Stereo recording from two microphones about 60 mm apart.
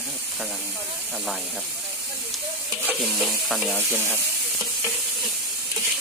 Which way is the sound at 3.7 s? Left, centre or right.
Right.